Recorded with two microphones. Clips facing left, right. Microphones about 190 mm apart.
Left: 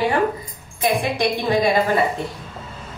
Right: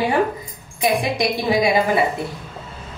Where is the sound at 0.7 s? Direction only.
10° right (ahead or behind).